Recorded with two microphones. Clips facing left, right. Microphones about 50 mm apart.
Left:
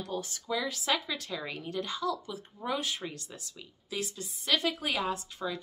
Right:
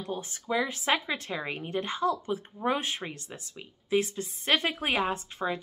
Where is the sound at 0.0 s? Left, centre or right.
Right.